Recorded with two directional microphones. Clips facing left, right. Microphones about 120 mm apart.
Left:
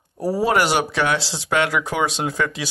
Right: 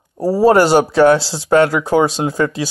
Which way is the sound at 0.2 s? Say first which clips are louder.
Right 8 dB; 30° right (ahead or behind).